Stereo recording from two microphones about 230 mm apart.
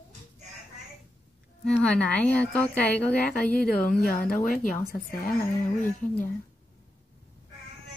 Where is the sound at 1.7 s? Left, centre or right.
Centre.